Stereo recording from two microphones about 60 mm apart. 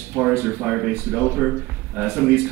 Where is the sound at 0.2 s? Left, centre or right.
Left.